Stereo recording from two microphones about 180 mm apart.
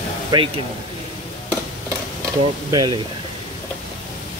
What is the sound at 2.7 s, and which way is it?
Speech, 25° right (ahead or behind).